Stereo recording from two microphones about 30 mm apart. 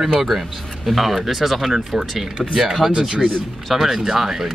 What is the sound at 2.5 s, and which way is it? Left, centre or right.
Speech, centre.